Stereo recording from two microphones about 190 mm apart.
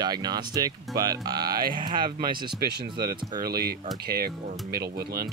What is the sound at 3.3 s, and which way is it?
Speech, 55° right (ahead or behind).